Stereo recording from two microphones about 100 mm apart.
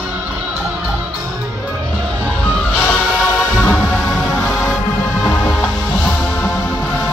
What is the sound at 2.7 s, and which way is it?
Music, 20° left (ahead or behind).